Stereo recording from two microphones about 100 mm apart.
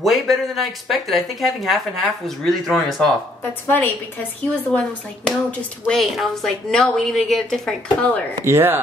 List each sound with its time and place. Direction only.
0.0 s a woman's voice: centre (ahead or behind)
3.6 s a woman's voice: 20° left (ahead or behind)
4.7 s a woman's voice: 5° left (ahead or behind)
8.5 s speech: 25° right (ahead or behind)